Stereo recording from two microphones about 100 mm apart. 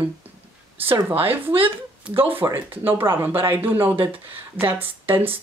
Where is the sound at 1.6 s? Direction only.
65° right (ahead or behind).